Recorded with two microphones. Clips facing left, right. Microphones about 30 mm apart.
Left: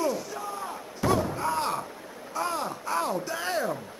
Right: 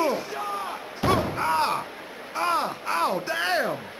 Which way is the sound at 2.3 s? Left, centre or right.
Right.